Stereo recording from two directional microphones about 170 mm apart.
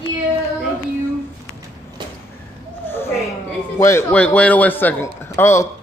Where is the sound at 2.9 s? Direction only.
15° left (ahead or behind).